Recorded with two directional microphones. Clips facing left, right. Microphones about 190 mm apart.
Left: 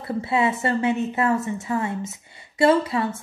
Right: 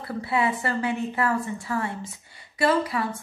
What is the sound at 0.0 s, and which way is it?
A woman's voice, 25° left (ahead or behind).